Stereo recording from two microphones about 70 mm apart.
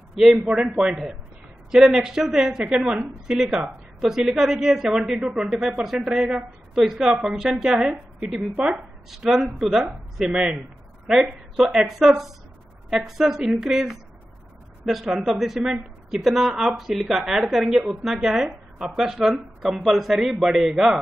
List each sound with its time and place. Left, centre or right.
0.2 s a woman's voice: centre
8.5 s speech: centre
9.1 s a woman's voice: centre